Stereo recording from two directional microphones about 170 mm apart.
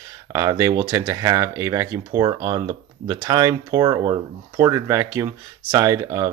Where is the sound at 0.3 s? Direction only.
20° right (ahead or behind).